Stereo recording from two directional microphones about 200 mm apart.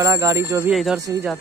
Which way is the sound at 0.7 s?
Centre (ahead or behind).